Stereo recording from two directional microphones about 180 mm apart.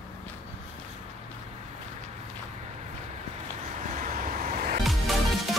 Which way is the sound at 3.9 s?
45° right (ahead or behind).